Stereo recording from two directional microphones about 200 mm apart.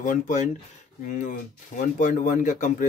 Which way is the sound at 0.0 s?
40° left (ahead or behind).